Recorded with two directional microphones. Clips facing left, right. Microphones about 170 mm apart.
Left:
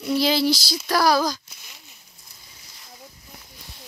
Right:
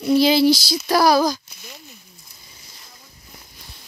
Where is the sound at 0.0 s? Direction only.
15° right (ahead or behind).